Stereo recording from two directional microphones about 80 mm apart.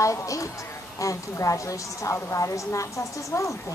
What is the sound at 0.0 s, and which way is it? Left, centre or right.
Speech, left.